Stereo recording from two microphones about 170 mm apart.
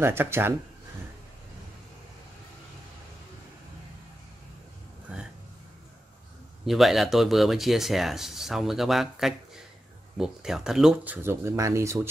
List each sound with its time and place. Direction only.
0.0 s speech: 15° right (ahead or behind)
6.6 s speech: centre (ahead or behind)
11.2 s speech: 15° right (ahead or behind)